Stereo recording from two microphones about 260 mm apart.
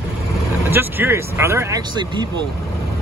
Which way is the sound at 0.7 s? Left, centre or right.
Centre.